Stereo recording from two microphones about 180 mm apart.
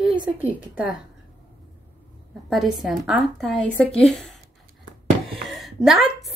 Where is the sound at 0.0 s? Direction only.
10° right (ahead or behind).